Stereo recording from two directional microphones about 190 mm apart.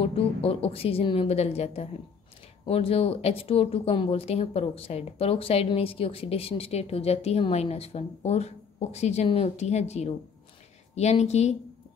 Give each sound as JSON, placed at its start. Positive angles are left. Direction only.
{"t": 0.0, "sound": "speech", "side_deg": 30}